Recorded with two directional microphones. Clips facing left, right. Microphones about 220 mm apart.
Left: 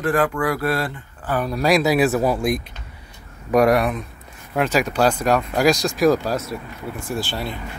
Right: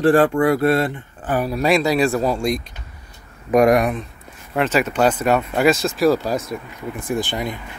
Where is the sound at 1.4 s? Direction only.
Centre (ahead or behind).